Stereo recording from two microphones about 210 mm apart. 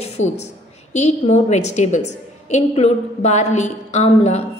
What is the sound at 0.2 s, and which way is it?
Speech, 65° left (ahead or behind).